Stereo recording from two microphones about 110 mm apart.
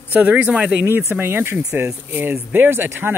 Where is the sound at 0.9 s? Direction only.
20° right (ahead or behind).